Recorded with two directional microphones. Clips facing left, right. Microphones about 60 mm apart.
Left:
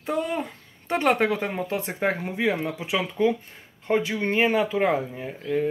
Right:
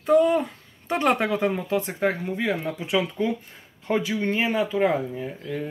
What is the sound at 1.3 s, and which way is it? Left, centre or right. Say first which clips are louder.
Speech: right 3 dB; left.